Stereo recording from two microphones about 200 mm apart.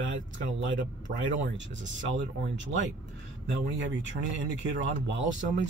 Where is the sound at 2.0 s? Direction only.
65° right (ahead or behind).